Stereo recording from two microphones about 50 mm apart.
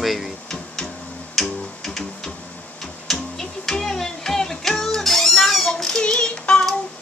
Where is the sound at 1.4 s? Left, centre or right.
Centre.